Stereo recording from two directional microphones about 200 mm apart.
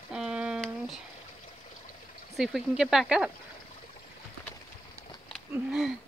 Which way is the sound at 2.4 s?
Centre (ahead or behind).